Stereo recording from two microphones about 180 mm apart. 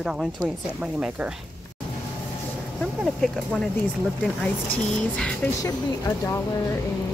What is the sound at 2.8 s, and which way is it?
Speech, 5° left (ahead or behind).